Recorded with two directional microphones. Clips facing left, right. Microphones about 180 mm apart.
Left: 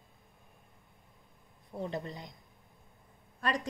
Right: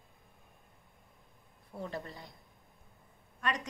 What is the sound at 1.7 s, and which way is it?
Speech, 20° left (ahead or behind).